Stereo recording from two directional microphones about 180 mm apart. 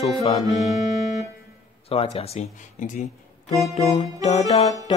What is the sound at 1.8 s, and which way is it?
Music, 35° left (ahead or behind).